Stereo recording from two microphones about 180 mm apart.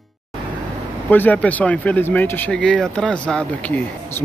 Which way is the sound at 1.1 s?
10° left (ahead or behind).